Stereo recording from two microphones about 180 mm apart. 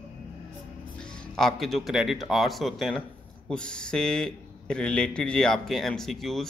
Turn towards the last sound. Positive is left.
turn(degrees=0)  # may be behind; listen again after turning